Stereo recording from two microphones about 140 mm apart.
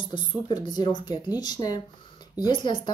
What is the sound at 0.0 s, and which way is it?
Speech, 35° left (ahead or behind).